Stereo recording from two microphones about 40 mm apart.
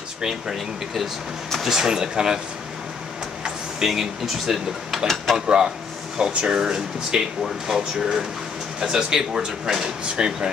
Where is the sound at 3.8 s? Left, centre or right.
Centre.